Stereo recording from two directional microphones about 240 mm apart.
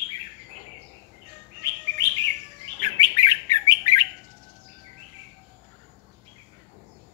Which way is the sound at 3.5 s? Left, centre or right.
Centre.